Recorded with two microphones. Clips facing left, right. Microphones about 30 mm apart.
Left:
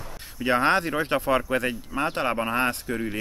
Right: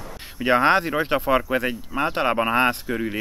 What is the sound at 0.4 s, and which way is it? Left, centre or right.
Speech, centre.